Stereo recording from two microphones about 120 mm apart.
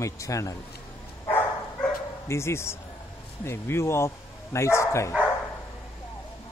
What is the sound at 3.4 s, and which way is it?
Speech, 20° left (ahead or behind).